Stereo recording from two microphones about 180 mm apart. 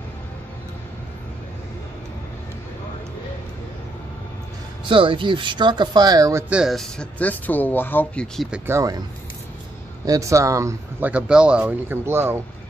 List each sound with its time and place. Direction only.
4.8 s speech: 30° right (ahead or behind)
6.5 s speech: centre (ahead or behind)
8.5 s speech: 15° right (ahead or behind)
10.0 s speech: 20° right (ahead or behind)